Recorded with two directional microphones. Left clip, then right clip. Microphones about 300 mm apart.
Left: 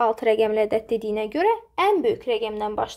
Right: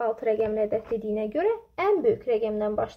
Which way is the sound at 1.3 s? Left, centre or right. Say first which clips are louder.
Left 6 dB; centre.